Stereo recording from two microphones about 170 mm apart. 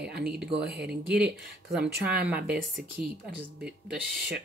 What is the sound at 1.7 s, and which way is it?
Speech, 5° right (ahead or behind).